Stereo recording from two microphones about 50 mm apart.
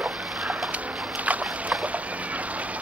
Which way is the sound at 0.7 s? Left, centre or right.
Right.